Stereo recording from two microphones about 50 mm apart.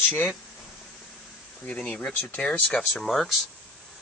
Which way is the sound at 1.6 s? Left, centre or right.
Left.